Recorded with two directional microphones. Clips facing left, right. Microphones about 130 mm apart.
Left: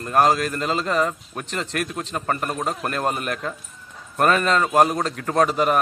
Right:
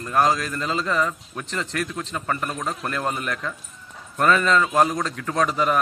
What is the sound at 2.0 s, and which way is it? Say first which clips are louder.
A man's voice: left 2 dB; 35° left (ahead or behind).